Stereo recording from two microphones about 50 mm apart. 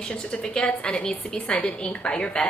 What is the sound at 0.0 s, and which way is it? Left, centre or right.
A woman's voice, centre.